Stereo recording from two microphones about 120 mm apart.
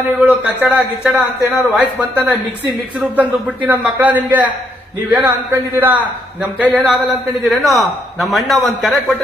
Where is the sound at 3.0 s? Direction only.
10° right (ahead or behind).